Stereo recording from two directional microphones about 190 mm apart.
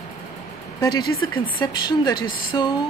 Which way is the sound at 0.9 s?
20° left (ahead or behind).